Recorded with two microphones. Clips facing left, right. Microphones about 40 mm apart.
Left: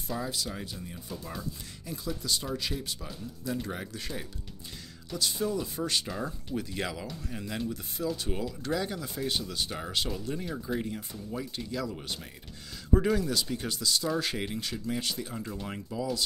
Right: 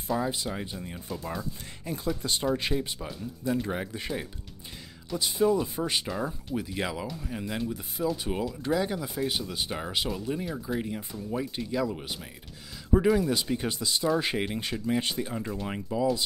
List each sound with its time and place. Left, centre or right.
0.2 s speech: right
1.9 s speech: right
2.7 s speech: right
13.3 s speech: right